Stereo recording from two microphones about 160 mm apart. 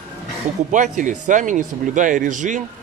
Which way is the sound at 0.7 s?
50° right (ahead or behind).